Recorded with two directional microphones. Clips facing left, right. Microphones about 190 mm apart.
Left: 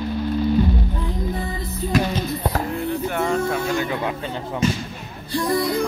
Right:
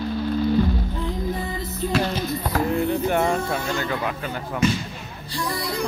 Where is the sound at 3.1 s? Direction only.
25° right (ahead or behind).